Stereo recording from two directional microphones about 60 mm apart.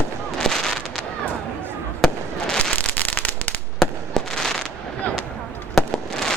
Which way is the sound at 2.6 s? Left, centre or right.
Left.